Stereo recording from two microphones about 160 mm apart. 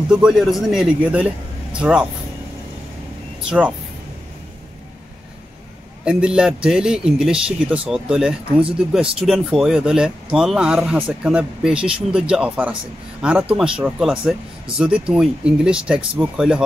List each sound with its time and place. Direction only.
0.1 s speech: 5° right (ahead or behind)
3.4 s speech: 10° right (ahead or behind)
6.0 s speech: 5° right (ahead or behind)